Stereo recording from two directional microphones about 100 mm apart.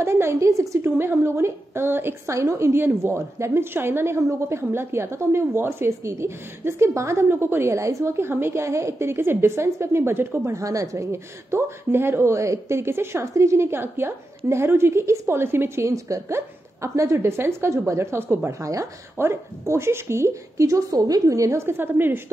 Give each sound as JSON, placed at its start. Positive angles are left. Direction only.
{"t": 0.0, "sound": "a woman's voice", "side_deg": -25}